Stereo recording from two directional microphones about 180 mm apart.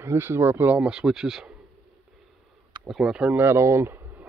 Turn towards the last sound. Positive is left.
turn(degrees=-10)  # may be behind; listen again after turning